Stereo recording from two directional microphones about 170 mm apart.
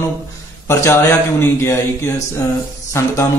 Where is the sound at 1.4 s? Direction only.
15° left (ahead or behind).